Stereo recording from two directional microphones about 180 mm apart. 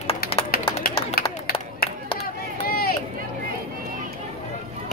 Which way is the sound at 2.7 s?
55° left (ahead or behind).